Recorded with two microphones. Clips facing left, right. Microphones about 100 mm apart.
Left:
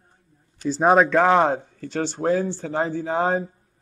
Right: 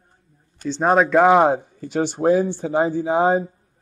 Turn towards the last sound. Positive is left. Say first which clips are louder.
# right 5 dB
turn(degrees=-10)  # may be behind; listen again after turning